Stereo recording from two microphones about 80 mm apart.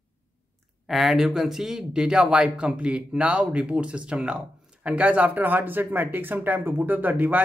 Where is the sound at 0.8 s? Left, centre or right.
Centre.